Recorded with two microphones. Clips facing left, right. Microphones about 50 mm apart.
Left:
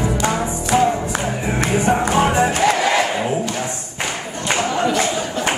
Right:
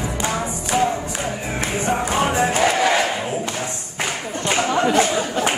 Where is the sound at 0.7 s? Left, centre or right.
Centre.